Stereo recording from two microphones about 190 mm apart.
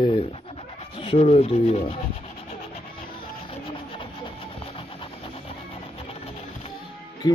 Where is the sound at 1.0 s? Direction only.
30° left (ahead or behind).